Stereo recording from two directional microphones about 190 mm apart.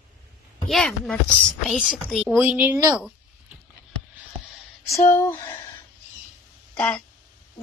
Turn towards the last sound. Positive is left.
turn(degrees=5)  # may be behind; listen again after turning